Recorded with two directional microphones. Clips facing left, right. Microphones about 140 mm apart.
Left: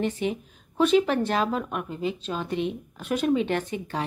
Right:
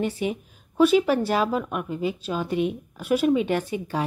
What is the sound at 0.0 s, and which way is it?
Speech, 10° right (ahead or behind).